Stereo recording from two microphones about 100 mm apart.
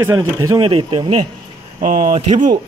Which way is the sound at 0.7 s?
60° right (ahead or behind).